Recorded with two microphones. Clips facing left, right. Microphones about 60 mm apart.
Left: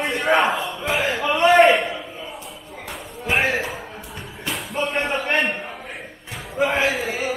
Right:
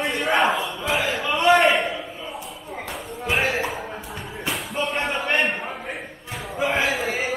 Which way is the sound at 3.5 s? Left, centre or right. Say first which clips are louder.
Even; centre.